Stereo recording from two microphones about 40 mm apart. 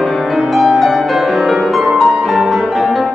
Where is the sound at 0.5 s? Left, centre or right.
Centre.